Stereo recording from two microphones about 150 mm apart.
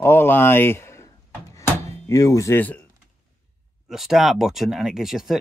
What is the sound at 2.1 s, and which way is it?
Speech, 20° left (ahead or behind).